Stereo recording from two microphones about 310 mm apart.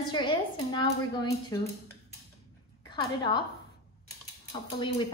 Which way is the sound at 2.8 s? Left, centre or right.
Centre.